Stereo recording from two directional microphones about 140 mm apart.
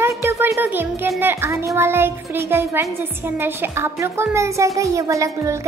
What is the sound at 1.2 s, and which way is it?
A child's voice, 15° right (ahead or behind).